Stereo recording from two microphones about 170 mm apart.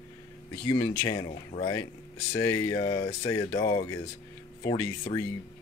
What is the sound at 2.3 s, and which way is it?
Speech, 20° left (ahead or behind).